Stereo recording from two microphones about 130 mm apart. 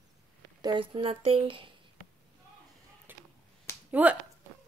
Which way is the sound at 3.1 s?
15° right (ahead or behind).